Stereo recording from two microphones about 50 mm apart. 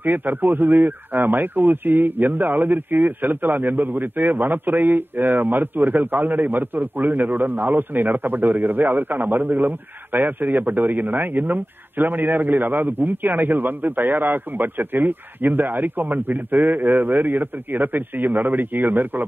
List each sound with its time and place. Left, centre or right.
0.0 s a man's voice: right